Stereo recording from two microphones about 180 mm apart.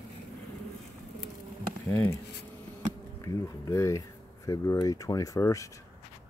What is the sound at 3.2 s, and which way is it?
Speech, 15° left (ahead or behind).